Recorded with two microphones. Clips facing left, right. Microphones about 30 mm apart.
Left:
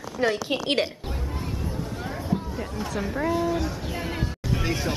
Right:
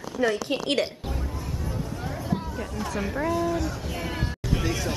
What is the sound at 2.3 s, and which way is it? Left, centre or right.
Hubbub, centre.